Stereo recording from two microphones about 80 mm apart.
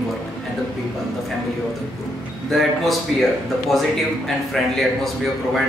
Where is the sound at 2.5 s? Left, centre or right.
Centre.